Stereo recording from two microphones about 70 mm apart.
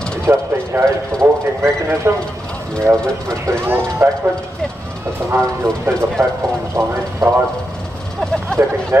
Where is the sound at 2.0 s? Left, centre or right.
Right.